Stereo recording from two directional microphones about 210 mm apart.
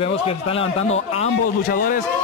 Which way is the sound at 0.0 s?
25° left (ahead or behind).